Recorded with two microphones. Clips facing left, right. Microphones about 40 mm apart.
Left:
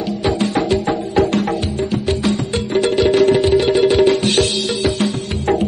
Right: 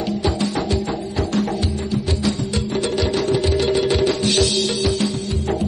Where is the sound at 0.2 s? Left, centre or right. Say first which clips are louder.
Left 4 dB; left.